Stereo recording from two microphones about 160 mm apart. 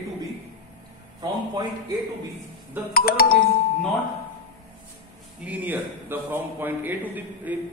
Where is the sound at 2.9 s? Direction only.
70° left (ahead or behind).